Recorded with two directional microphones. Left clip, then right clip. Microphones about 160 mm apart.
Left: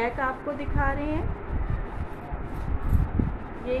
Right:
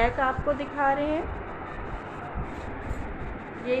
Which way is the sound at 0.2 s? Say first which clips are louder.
Right 2 dB; 20° left (ahead or behind).